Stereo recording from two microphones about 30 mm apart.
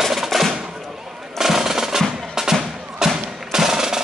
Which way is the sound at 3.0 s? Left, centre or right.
Centre.